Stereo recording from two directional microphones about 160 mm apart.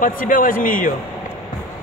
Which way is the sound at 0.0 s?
60° left (ahead or behind).